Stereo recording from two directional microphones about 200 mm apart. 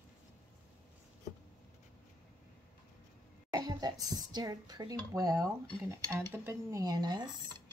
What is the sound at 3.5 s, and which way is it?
Speech, 20° right (ahead or behind).